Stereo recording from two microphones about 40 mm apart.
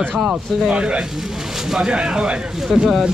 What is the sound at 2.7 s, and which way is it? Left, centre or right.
Speech, centre.